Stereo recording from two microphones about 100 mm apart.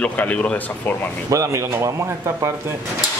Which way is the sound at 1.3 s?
30° right (ahead or behind).